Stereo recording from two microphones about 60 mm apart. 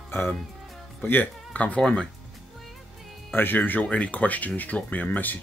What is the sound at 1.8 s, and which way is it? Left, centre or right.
Speech, centre.